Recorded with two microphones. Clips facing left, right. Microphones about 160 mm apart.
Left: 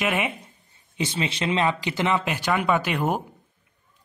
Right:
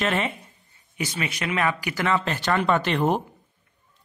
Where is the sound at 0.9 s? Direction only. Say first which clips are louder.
Left 2 dB; 25° left (ahead or behind); by 3.2 s 5° left (ahead or behind).